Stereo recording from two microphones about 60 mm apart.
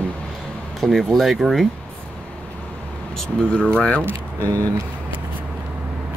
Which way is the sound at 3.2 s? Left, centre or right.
Centre.